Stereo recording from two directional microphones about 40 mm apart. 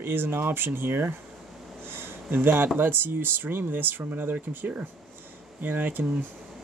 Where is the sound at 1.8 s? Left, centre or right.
Right.